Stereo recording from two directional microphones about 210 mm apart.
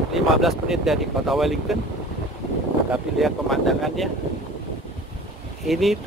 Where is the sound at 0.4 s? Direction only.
Centre (ahead or behind).